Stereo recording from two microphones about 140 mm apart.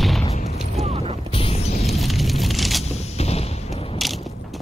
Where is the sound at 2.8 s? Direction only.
50° left (ahead or behind).